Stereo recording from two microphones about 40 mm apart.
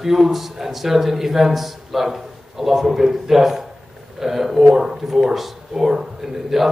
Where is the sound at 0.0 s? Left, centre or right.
Centre.